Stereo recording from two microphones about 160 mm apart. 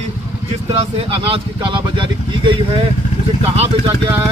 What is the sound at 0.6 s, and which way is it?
Speech, 40° right (ahead or behind).